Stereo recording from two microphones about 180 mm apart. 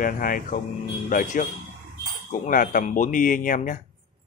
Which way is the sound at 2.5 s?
50° left (ahead or behind).